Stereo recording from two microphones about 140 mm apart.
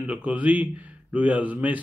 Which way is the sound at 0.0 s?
10° right (ahead or behind).